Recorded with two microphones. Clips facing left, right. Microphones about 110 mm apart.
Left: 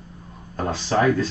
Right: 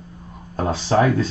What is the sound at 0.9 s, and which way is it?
Speech, 20° right (ahead or behind).